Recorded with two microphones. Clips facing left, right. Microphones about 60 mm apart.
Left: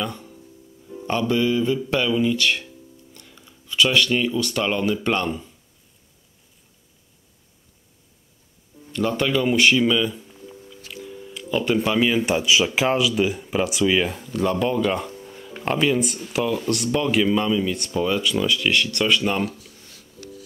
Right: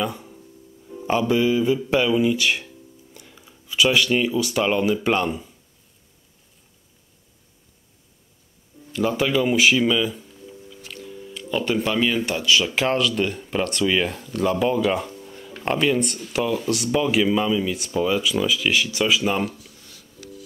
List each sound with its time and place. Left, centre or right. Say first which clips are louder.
0.0 s music: right 2 dB; centre
1.0 s speech: right 2 dB; centre
8.9 s speech: right 1 dB; centre
10.7 s music: left 1 dB; centre
12.2 s speech: left 1 dB; centre
12.8 s speech: left 1 dB; centre